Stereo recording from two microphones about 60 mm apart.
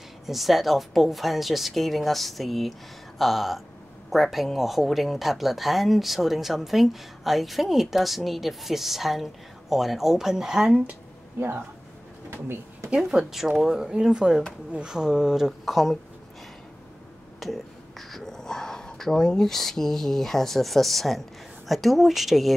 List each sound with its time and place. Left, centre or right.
0.3 s speech: centre
11.3 s speech: right
12.9 s speech: centre
17.4 s speech: centre